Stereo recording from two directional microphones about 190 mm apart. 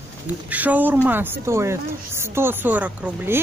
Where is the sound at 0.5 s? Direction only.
10° right (ahead or behind).